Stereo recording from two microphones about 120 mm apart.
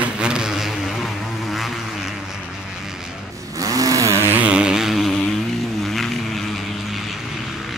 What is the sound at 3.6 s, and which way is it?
Vehicle, 30° right (ahead or behind).